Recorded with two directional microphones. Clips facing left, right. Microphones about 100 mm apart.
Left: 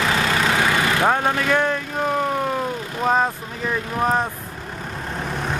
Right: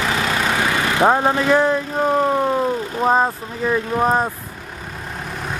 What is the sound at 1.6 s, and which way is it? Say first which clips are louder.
Vehicle: right 4 dB; 15° right (ahead or behind).